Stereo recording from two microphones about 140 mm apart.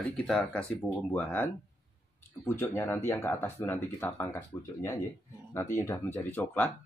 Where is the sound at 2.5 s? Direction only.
15° left (ahead or behind).